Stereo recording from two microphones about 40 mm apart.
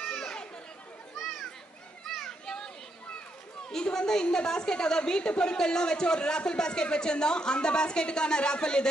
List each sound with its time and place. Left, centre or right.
0.1 s children playing: centre
1.2 s children playing: centre
3.9 s a woman's voice: centre